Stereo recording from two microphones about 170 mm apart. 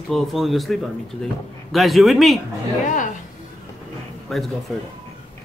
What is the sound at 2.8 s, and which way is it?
Speech, 50° left (ahead or behind).